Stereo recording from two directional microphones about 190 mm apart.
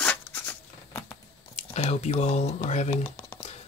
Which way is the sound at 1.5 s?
35° left (ahead or behind).